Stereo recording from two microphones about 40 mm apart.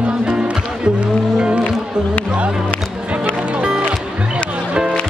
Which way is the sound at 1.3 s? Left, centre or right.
Right.